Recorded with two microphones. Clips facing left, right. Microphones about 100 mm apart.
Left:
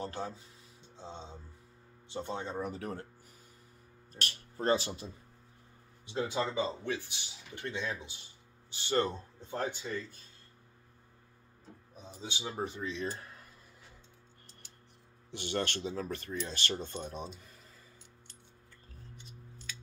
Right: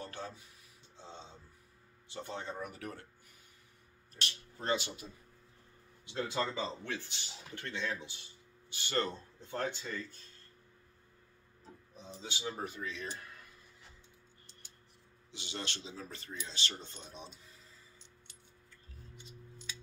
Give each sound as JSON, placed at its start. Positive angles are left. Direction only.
{"t": 0.0, "sound": "a sound", "side_deg": 20}
{"t": 0.9, "sound": "speech", "side_deg": 20}
{"t": 4.2, "sound": "speech", "side_deg": 40}
{"t": 6.1, "sound": "speech", "side_deg": 15}
{"t": 12.2, "sound": "speech", "side_deg": 20}
{"t": 15.3, "sound": "speech", "side_deg": 55}